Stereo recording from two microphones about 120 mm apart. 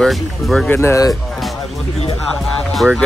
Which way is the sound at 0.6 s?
20° left (ahead or behind).